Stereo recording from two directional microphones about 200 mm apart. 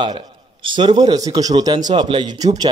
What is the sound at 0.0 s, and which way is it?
A man's voice, 25° right (ahead or behind).